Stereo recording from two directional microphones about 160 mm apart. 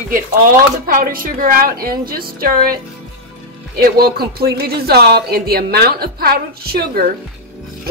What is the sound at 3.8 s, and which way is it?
Speech, 75° right (ahead or behind).